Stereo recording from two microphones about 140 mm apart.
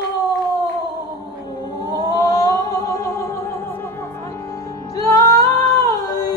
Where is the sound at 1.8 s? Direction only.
25° left (ahead or behind).